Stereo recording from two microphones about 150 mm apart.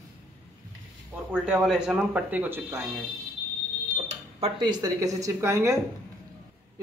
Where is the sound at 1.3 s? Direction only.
5° right (ahead or behind).